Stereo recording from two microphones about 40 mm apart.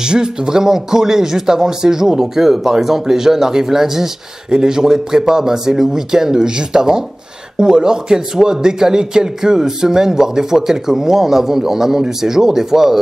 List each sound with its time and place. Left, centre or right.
0.0 s speech: centre